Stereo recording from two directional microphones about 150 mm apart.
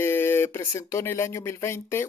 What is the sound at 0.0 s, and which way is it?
Speech, 15° left (ahead or behind).